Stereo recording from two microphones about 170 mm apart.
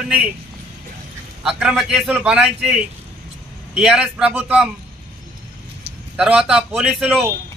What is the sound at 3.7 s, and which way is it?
Speech, 5° right (ahead or behind).